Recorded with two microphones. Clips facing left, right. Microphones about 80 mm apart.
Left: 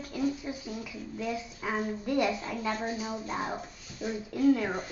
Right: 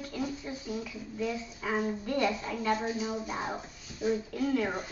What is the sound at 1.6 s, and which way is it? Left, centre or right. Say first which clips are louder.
Speech: right 1 dB; centre.